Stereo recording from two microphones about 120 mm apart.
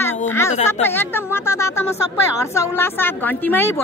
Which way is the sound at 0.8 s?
20° left (ahead or behind).